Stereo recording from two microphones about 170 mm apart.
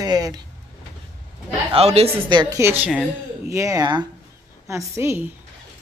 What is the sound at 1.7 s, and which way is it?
Speech, 35° right (ahead or behind).